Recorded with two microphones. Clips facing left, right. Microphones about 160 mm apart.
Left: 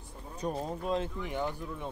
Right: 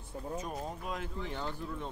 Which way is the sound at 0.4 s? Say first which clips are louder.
Left 5 dB; 30° left (ahead or behind).